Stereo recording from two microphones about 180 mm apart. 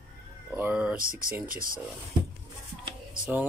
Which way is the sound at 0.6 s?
10° right (ahead or behind).